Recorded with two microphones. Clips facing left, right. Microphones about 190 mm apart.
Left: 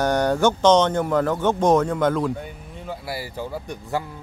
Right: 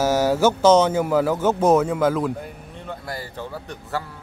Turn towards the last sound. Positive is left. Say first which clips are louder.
# left 2 dB
turn(degrees=15)  # may be behind; listen again after turning